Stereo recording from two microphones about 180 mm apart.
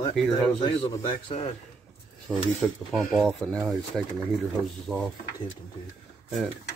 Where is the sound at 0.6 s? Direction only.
30° left (ahead or behind).